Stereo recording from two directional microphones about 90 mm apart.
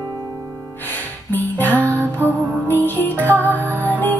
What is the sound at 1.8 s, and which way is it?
Music, 25° right (ahead or behind).